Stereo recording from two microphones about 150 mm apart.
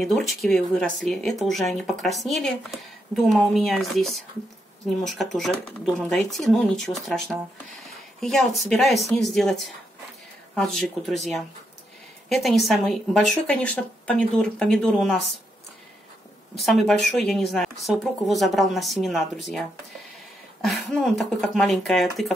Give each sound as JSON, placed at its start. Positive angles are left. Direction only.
{"t": 0.0, "sound": "speech", "side_deg": 0}
{"t": 16.5, "sound": "speech", "side_deg": 0}
{"t": 20.6, "sound": "speech", "side_deg": 0}